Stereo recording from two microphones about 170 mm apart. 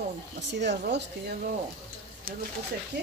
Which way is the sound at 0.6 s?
90° right.